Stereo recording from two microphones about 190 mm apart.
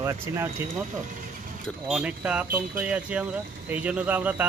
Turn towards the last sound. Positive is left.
turn(degrees=-10)  # may be behind; listen again after turning